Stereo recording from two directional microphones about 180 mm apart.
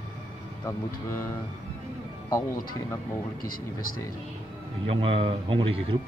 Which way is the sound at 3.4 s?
50° left (ahead or behind).